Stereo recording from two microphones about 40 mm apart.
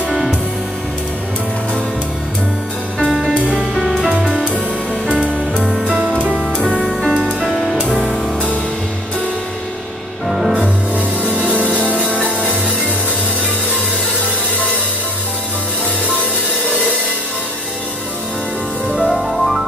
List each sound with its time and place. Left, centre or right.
0.1 s music: centre
3.1 s music: centre
5.1 s music: right
6.6 s music: left
7.3 s music: centre
10.2 s music: centre
11.9 s music: right
18.9 s music: right
19.1 s music: centre